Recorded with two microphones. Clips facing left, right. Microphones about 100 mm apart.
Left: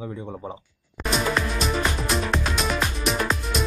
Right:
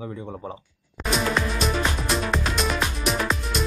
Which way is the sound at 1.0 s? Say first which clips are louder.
Even; centre (ahead or behind).